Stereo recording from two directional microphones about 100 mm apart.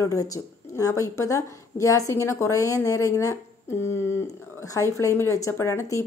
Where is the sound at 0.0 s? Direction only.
35° left (ahead or behind).